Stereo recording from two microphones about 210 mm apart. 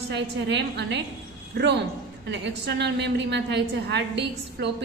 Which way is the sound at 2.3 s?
55° right (ahead or behind).